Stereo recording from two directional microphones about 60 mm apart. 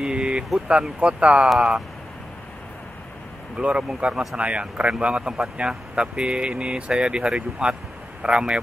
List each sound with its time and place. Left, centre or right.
0.0 s a sound: centre
0.7 s speech: centre
3.5 s speech: centre